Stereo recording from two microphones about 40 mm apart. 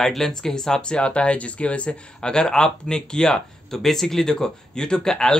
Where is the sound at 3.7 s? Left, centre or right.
Centre.